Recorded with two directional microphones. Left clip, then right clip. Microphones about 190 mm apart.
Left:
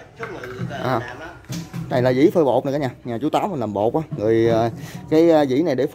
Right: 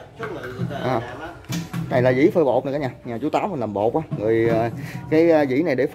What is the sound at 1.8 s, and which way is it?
Speech, 25° left (ahead or behind).